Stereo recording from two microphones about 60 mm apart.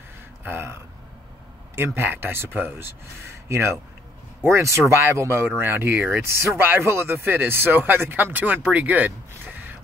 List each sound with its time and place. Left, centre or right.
0.4 s throat clearing: right
1.8 s speech: right
6.2 s speech: right